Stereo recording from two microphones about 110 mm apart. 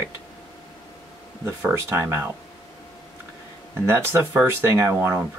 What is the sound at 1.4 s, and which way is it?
Speech, 20° right (ahead or behind).